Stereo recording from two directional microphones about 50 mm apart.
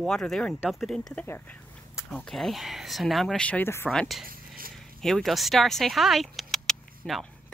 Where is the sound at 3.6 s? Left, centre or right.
Left.